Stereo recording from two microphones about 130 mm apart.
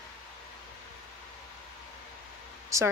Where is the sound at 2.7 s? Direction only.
25° right (ahead or behind).